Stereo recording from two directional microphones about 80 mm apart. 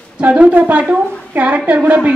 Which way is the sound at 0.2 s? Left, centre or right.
Centre.